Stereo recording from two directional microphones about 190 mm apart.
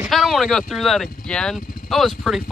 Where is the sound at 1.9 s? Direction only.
Centre (ahead or behind).